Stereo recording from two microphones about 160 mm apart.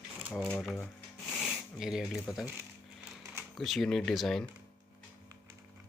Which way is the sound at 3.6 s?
Centre (ahead or behind).